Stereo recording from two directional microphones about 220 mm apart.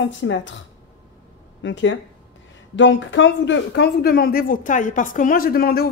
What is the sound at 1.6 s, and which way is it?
A woman's voice, 55° left (ahead or behind).